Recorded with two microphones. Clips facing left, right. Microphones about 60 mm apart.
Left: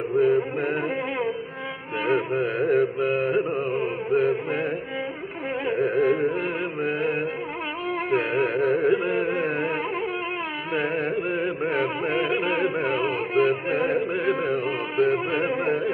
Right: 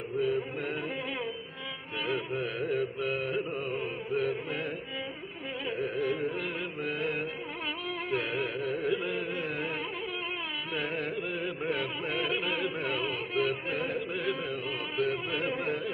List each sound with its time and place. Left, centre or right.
0.1 s music: left
0.6 s music: left
3.3 s carnatic music: left
3.5 s music: left
4.1 s music: left
5.9 s music: left
6.9 s music: left
8.9 s music: left
10.7 s carnatic music: left
11.7 s music: left